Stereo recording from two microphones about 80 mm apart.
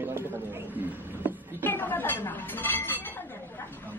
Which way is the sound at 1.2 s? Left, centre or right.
Right.